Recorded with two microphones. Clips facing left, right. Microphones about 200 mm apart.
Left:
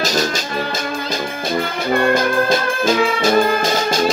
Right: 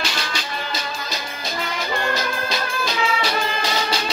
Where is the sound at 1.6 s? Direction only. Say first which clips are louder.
Left 7 dB; 55° left (ahead or behind).